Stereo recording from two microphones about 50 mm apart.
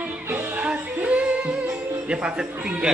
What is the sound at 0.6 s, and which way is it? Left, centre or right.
Music, right.